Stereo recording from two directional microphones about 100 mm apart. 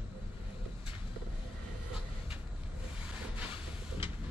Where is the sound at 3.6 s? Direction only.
10° right (ahead or behind).